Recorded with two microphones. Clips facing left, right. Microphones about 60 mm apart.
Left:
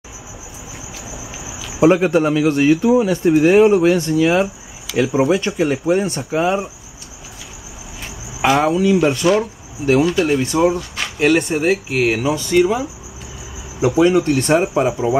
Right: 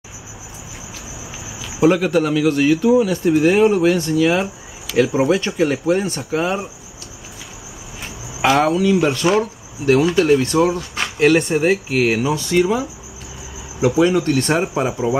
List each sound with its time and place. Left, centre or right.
1.8 s a man's voice: left
4.2 s speech: centre
8.4 s speech: centre
13.8 s a man's voice: left